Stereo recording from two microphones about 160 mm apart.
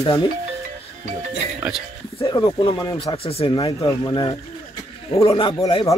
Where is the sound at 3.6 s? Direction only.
25° left (ahead or behind).